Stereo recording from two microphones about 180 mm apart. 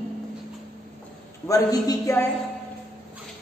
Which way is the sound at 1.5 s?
20° left (ahead or behind).